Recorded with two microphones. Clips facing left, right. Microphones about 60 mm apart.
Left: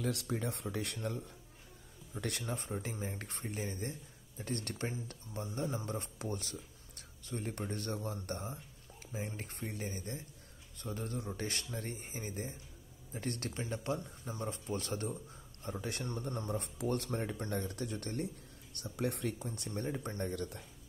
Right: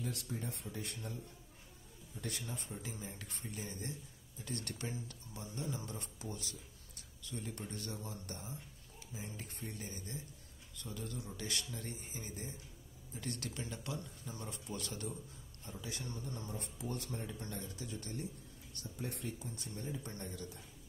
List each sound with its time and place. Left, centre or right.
0.0 s speech: left
2.4 s speech: left
6.1 s speech: left
10.7 s speech: left
13.5 s speech: left
15.6 s speech: left
19.3 s speech: left